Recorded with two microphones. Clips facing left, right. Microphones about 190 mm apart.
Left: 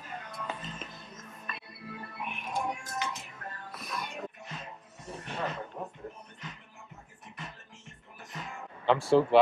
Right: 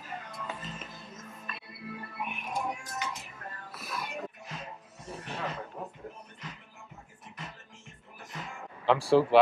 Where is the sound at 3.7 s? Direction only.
5° right (ahead or behind).